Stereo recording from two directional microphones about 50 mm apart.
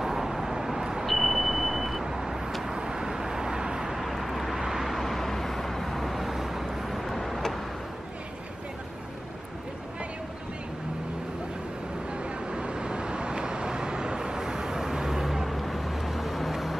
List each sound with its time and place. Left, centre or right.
0.0 s vehicle: centre
4.9 s vehicle: centre
12.1 s vehicle: right; by 16.7 s centre